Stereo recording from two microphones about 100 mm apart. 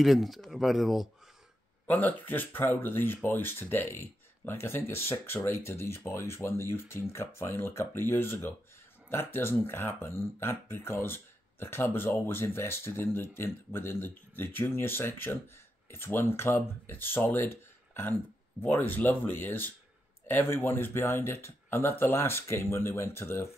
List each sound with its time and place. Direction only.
0.0 s speech: centre (ahead or behind)
1.9 s speech: 15° left (ahead or behind)